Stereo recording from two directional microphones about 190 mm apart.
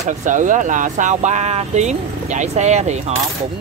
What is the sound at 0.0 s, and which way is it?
Speech, 40° right (ahead or behind).